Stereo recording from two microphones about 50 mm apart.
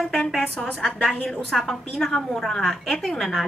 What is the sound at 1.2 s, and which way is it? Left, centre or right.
A woman's voice, centre.